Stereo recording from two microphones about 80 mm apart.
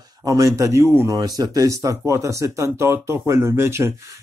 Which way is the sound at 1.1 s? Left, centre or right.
Right.